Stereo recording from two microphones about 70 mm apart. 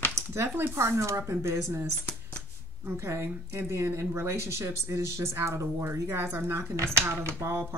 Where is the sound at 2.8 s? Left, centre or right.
Right.